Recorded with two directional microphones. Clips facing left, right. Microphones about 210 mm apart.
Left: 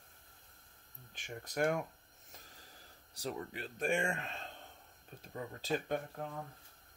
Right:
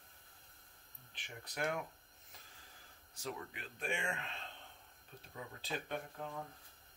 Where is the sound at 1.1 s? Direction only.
45° left (ahead or behind).